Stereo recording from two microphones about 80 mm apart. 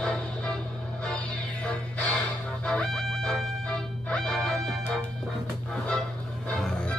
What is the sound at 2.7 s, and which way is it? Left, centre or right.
Music, centre.